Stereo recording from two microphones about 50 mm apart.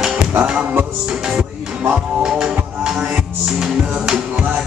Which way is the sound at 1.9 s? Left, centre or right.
Centre.